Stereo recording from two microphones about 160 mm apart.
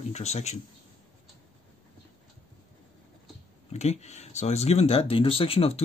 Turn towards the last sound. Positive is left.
turn(degrees=35)  # may be behind; listen again after turning